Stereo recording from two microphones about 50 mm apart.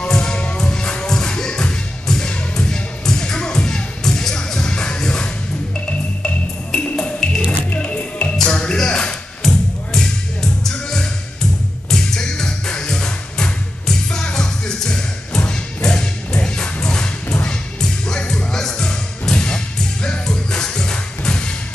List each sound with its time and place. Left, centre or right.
0.1 s music: centre
8.7 s a sound: centre
9.5 s music: centre